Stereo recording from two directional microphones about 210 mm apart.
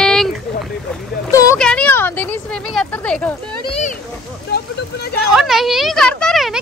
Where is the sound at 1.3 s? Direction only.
15° left (ahead or behind).